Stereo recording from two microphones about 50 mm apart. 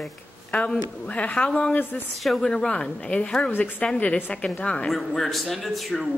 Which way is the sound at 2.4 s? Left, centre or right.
Centre.